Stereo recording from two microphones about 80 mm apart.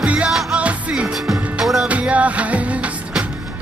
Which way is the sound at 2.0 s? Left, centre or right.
Centre.